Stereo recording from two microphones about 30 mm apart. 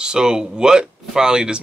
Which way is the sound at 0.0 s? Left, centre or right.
Right.